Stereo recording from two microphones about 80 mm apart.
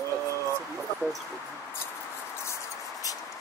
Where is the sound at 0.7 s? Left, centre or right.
Centre.